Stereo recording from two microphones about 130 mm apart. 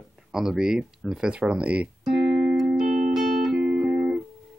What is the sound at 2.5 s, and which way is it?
Music, 5° right (ahead or behind).